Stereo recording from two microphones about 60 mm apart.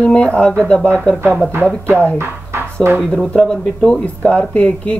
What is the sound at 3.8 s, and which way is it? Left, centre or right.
Speech, centre.